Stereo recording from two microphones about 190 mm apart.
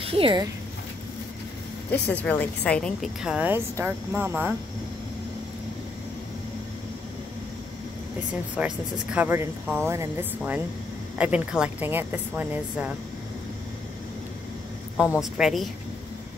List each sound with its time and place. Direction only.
0.0 s speech: 30° right (ahead or behind)
1.9 s a woman's voice: 10° left (ahead or behind); by 4.6 s 10° right (ahead or behind)
8.5 s speech: 5° right (ahead or behind)
15.1 s a woman's voice: centre (ahead or behind)